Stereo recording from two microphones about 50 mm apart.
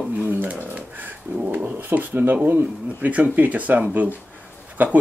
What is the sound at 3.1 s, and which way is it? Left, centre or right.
Speech, right.